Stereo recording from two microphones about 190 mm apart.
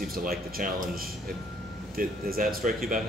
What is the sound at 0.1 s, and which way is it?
Speech, 50° right (ahead or behind).